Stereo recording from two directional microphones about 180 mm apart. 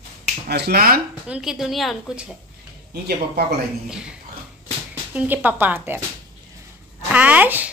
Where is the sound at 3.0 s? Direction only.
60° right (ahead or behind).